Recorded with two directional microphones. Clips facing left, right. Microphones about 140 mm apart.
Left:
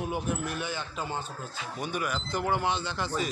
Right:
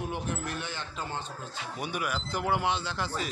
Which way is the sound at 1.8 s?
5° right (ahead or behind).